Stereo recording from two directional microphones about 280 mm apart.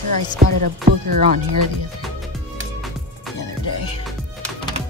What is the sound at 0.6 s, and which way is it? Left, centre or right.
Speech, right.